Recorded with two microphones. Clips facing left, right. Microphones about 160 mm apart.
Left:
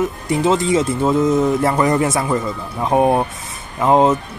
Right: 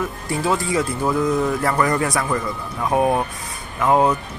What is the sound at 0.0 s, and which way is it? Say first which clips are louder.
Speech: left 6 dB; 20° left (ahead or behind).